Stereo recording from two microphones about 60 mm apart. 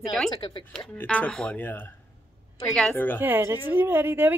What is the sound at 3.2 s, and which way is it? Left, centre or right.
Speech, right.